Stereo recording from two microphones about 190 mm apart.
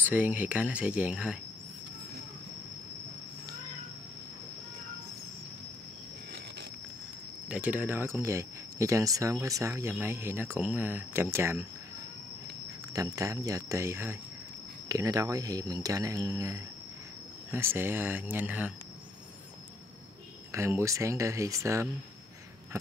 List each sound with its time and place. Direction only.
0.0 s speech: 10° right (ahead or behind)
7.4 s speech: 10° right (ahead or behind)
12.9 s speech: 15° right (ahead or behind)
20.5 s speech: 15° right (ahead or behind)